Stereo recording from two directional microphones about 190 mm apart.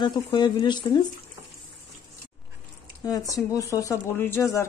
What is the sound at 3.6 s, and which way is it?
Speech, 15° left (ahead or behind).